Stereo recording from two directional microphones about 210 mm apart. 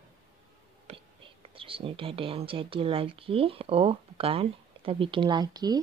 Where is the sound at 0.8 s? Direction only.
25° right (ahead or behind).